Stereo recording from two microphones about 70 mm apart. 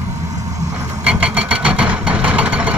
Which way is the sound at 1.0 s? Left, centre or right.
Centre.